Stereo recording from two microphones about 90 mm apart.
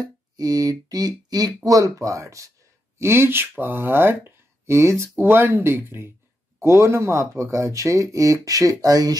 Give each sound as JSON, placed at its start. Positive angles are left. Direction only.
{"t": 0.0, "sound": "speech", "side_deg": -45}